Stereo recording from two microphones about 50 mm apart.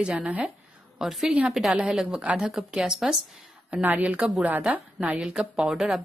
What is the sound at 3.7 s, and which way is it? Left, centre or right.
A woman's voice, right.